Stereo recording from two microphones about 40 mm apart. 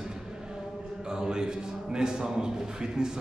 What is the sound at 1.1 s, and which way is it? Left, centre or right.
A man's voice, centre.